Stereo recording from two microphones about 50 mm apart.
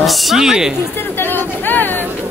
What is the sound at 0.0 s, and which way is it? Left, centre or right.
Speech, centre.